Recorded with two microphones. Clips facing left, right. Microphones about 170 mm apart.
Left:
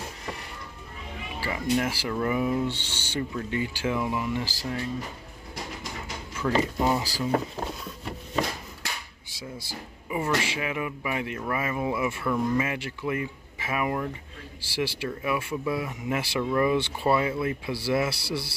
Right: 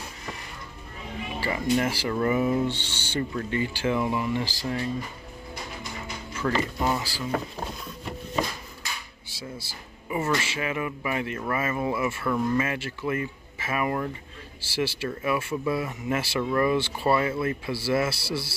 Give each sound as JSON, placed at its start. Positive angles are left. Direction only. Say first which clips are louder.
{"t": 1.4, "sound": "speech", "louder": "right 1 dB", "side_deg": 5}
{"t": 2.7, "sound": "speech", "louder": "right 2 dB", "side_deg": 10}
{"t": 6.3, "sound": "speech", "louder": "left 2 dB", "side_deg": 5}
{"t": 7.0, "sound": "speech", "louder": "left 3 dB", "side_deg": 35}
{"t": 8.8, "sound": "a sound", "louder": "left 1 dB", "side_deg": 75}
{"t": 9.3, "sound": "speech", "louder": "even", "side_deg": 15}